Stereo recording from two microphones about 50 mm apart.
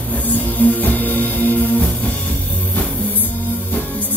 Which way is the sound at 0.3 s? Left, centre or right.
Left.